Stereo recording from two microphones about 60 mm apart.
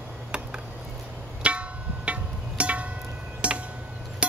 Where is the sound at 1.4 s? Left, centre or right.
Centre.